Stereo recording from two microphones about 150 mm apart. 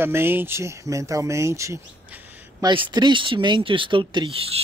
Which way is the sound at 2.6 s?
30° right (ahead or behind).